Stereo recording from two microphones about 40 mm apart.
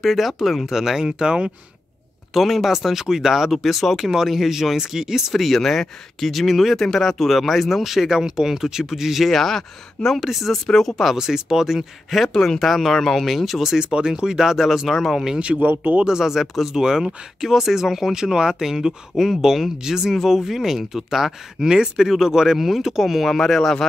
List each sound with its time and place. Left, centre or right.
0.0 s speech: centre
0.7 s speech: centre
2.3 s speech: centre
5.3 s speech: centre
9.3 s speech: centre
10.7 s speech: centre
11.1 s speech: centre
12.3 s speech: centre
15.3 s speech: right
15.6 s speech: right
16.0 s speech: centre
19.1 s speech: centre
21.6 s speech: centre